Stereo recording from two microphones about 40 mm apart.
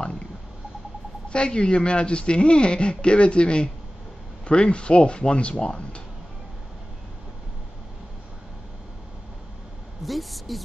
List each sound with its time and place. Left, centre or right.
1.3 s speech: left
10.0 s a woman's voice: centre